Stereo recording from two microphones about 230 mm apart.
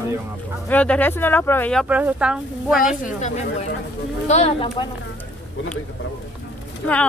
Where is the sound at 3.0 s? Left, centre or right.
Left.